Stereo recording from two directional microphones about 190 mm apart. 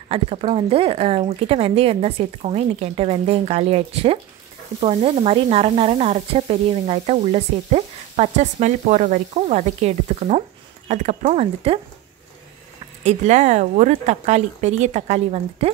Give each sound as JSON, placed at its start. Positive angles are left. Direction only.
{"t": 0.1, "sound": "speech", "side_deg": -30}
{"t": 13.0, "sound": "speech", "side_deg": -35}